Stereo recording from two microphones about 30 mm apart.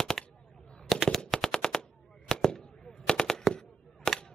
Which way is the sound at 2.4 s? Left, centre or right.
Left.